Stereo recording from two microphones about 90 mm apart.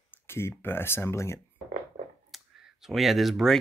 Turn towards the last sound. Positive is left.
turn(degrees=0)  # may be behind; listen again after turning